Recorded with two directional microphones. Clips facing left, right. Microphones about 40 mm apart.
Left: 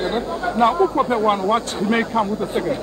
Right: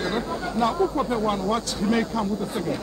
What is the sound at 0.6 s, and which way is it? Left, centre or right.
Speech, left.